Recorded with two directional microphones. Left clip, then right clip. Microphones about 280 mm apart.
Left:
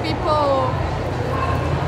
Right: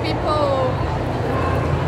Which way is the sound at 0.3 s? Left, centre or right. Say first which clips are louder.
Left 2 dB; centre.